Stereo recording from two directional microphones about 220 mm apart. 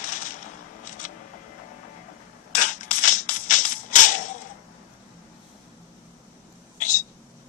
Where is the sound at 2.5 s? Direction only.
35° left (ahead or behind).